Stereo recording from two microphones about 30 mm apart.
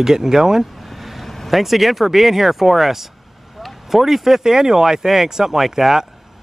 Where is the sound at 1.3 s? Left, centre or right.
Centre.